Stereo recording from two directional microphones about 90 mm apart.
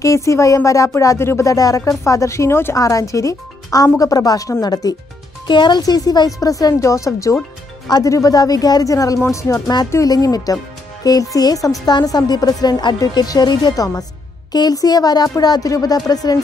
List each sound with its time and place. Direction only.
0.0 s a woman's voice: 35° left (ahead or behind)
5.5 s speech: 60° left (ahead or behind)
5.8 s a woman's voice: 45° left (ahead or behind)
10.0 s a woman's voice: 45° left (ahead or behind)